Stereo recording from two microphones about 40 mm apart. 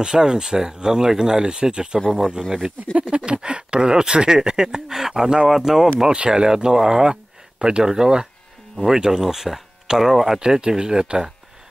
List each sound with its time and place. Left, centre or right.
0.0 s speech: centre
2.9 s a sound: right
3.4 s speech: right
6.1 s speech: right